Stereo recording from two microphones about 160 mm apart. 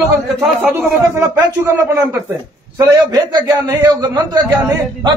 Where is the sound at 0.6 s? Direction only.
15° right (ahead or behind).